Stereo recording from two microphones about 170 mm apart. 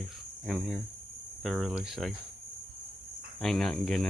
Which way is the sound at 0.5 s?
Centre (ahead or behind).